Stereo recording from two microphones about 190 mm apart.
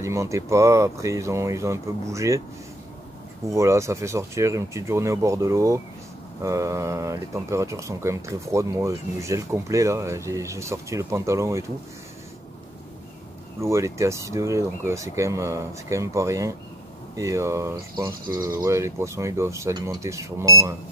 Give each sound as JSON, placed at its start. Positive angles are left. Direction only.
{"t": 0.0, "sound": "speech", "side_deg": -15}
{"t": 3.4, "sound": "speech", "side_deg": -15}
{"t": 13.6, "sound": "speech", "side_deg": -15}